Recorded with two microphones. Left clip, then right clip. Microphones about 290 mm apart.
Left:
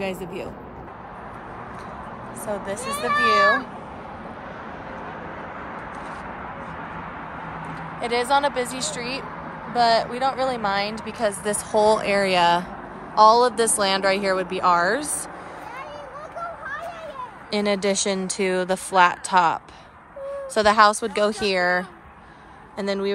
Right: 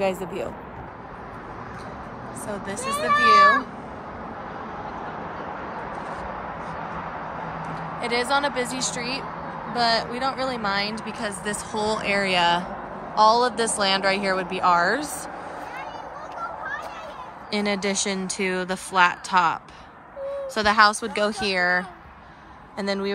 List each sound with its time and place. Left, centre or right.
2.4 s a woman's voice: centre
2.8 s speech: right
7.3 s vehicle: right
8.0 s a woman's voice: centre
17.5 s a woman's voice: centre